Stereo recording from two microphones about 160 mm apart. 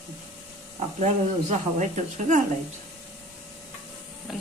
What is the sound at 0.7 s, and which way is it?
Speech, 45° right (ahead or behind).